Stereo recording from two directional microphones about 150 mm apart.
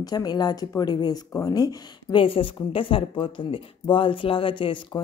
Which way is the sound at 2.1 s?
35° left (ahead or behind).